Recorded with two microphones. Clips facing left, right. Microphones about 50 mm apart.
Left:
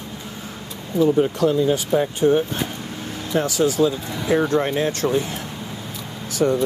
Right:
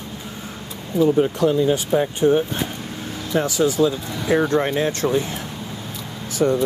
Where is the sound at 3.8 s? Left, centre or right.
Centre.